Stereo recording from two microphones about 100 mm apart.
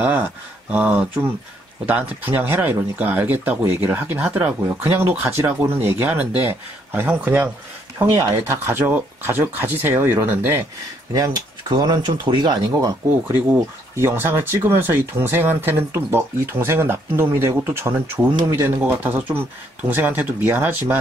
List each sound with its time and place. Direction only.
0.0 s speech: 15° right (ahead or behind)
8.2 s speech: 25° right (ahead or behind)
11.7 s speech: 45° right (ahead or behind)
13.5 s speech: 25° right (ahead or behind)